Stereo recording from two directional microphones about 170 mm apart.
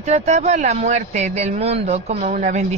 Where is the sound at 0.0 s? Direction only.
40° right (ahead or behind).